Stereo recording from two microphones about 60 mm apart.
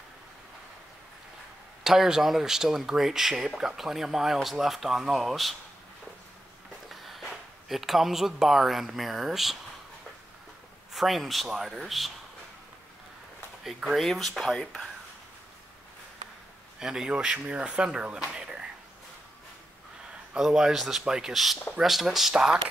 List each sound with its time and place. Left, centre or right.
1.8 s speech: centre
6.9 s speech: centre
10.9 s a man's voice: centre
13.8 s speech: centre
16.8 s speech: centre
18.3 s a sound: centre
20.3 s speech: centre